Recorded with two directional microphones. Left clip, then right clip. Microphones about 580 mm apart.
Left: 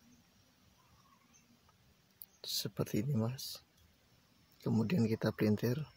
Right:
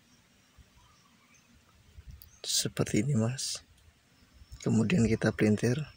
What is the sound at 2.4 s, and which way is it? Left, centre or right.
Speech, left.